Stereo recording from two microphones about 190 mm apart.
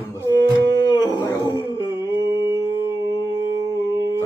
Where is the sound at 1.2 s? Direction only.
20° left (ahead or behind).